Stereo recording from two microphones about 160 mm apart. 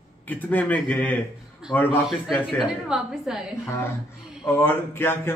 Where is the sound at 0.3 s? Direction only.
10° left (ahead or behind).